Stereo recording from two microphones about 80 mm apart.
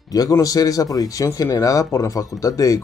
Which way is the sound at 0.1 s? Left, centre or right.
Left.